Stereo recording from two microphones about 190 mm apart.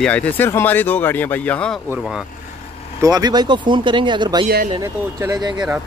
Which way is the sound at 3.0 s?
20° right (ahead or behind).